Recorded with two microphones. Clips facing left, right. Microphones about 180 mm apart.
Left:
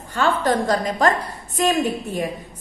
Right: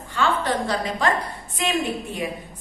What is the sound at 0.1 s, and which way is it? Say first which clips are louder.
A woman's voice: left 3 dB; 45° left (ahead or behind).